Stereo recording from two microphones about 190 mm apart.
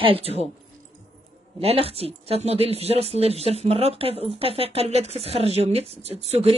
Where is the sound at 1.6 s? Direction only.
30° right (ahead or behind).